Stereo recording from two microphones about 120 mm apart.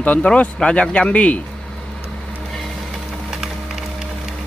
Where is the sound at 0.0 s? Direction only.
10° left (ahead or behind).